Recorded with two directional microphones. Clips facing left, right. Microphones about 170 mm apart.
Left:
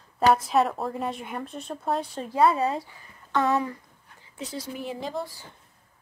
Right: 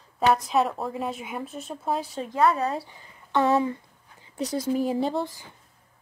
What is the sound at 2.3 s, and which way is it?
Speech, 30° left (ahead or behind).